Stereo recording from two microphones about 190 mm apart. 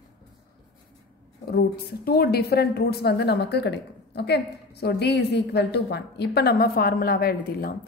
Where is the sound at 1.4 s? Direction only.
55° left (ahead or behind).